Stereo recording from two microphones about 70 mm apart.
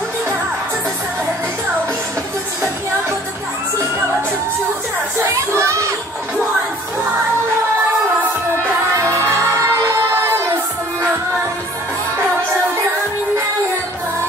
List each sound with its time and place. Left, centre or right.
5.2 s children playing: right
8.9 s music: right